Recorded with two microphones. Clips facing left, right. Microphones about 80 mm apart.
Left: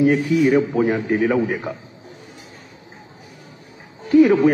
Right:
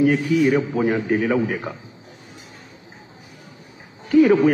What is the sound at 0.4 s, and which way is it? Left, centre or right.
A man's voice, centre.